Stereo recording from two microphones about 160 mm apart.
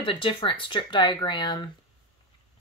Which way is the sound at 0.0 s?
35° left (ahead or behind).